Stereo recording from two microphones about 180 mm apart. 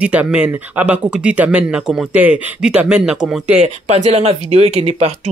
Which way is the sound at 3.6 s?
35° right (ahead or behind).